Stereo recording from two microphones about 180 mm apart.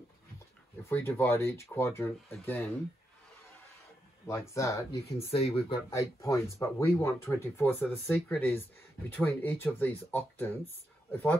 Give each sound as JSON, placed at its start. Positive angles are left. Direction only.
{"t": 0.8, "sound": "speech", "side_deg": 10}
{"t": 4.3, "sound": "speech", "side_deg": 15}
{"t": 5.3, "sound": "speech", "side_deg": 30}
{"t": 5.9, "sound": "speech", "side_deg": 15}